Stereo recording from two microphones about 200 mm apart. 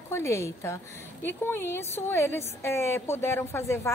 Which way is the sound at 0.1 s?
15° left (ahead or behind).